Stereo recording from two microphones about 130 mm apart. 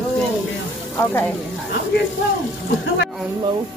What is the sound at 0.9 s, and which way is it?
Speech, 15° left (ahead or behind).